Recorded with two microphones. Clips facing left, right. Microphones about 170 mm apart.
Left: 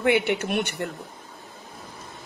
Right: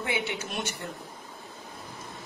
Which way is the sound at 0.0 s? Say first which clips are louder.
Left 10 dB; 65° left (ahead or behind).